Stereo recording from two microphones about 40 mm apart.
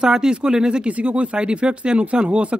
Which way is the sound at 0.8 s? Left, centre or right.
Right.